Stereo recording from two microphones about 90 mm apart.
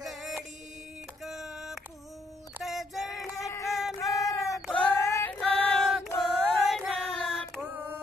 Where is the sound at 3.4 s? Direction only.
35° left (ahead or behind).